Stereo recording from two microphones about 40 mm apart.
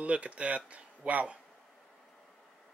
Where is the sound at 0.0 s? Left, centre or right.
Right.